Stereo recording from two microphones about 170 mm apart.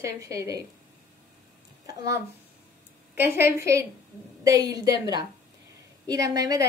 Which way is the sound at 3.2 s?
15° right (ahead or behind).